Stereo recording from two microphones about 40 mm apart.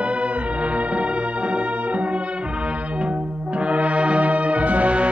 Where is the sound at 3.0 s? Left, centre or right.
Right.